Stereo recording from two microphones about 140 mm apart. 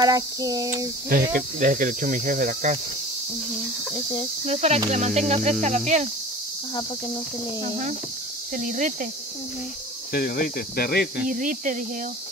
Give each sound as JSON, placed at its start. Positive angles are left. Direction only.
{"t": 0.0, "sound": "a sound", "side_deg": -25}
{"t": 1.0, "sound": "speech", "side_deg": -90}
{"t": 3.9, "sound": "cricket", "side_deg": 20}
{"t": 4.5, "sound": "speech", "side_deg": -50}
{"t": 8.5, "sound": "speech", "side_deg": -65}
{"t": 10.1, "sound": "speech", "side_deg": 90}
{"t": 11.2, "sound": "speech", "side_deg": -70}